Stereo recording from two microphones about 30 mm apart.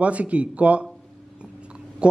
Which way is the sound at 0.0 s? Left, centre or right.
Right.